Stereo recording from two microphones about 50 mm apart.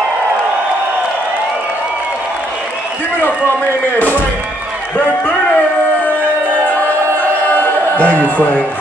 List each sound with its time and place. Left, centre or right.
4.9 s a man's voice: left
7.2 s choir: left
8.0 s a man's voice: right
8.4 s a man's voice: left